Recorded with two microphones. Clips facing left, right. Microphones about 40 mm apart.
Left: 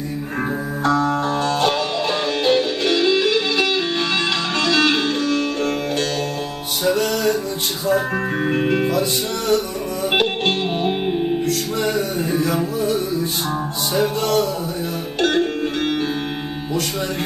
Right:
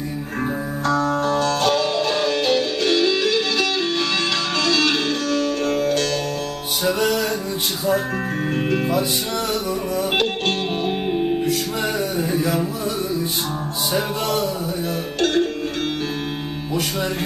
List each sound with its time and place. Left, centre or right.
0.8 s music: centre
6.8 s music: centre
8.5 s music: centre
10.1 s music: centre
12.2 s a sound: centre
13.9 s music: centre
15.1 s music: centre